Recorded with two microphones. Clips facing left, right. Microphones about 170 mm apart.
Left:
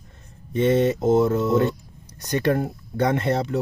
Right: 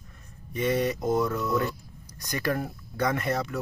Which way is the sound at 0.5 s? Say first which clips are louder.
Left 7 dB; 25° left (ahead or behind).